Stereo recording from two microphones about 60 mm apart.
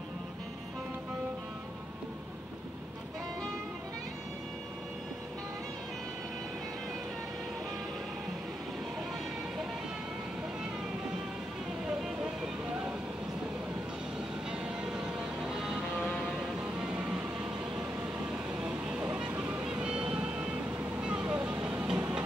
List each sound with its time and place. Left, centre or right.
14.5 s music: centre
16.3 s vehicle: centre